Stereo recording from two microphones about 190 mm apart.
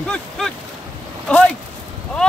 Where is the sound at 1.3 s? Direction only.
5° left (ahead or behind).